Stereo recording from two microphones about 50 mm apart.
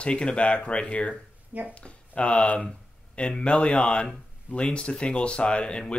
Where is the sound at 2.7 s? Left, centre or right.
Centre.